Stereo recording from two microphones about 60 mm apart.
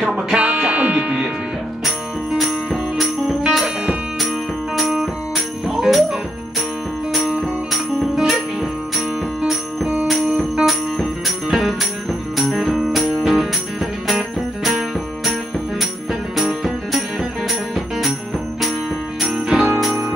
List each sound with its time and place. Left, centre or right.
0.0 s music: centre
1.9 s music: centre
19.3 s jingle bell: centre